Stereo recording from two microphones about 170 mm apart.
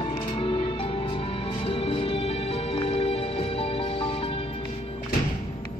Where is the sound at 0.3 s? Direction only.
30° left (ahead or behind).